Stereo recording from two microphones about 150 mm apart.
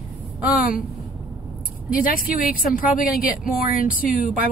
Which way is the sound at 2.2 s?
70° left (ahead or behind).